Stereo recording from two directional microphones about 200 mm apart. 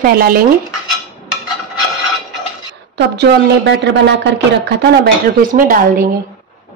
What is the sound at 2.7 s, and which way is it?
A woman's voice, 60° right (ahead or behind).